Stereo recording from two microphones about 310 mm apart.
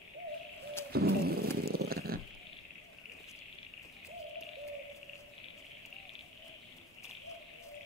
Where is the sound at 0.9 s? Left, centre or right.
Right.